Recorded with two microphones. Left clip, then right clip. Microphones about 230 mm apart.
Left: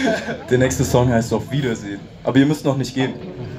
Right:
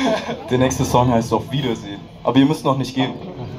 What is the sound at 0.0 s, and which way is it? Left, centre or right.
Speech, left.